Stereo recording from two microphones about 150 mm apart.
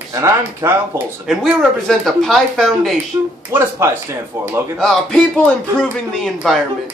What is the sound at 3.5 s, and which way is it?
Speech, 15° right (ahead or behind).